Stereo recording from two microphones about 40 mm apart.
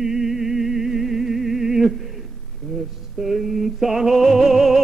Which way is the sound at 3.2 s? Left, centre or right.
Centre.